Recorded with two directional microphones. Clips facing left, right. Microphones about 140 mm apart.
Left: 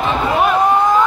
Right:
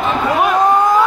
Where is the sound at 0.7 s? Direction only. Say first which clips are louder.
Right 1 dB; 10° right (ahead or behind).